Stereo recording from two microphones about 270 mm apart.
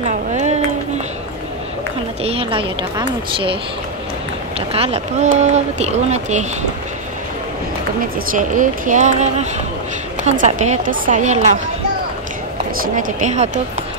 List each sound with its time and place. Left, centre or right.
0.3 s a sound: right
2.2 s speech: centre
4.6 s speech: right
8.4 s speech: right
12.8 s speech: right